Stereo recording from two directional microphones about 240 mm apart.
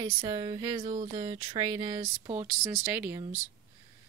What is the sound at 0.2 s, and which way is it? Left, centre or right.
Speech, centre.